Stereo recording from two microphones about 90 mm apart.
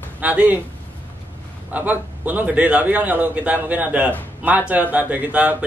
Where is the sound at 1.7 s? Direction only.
20° right (ahead or behind).